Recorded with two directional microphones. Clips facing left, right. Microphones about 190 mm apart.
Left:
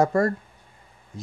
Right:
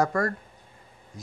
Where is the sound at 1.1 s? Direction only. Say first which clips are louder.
Left 5 dB; 25° left (ahead or behind).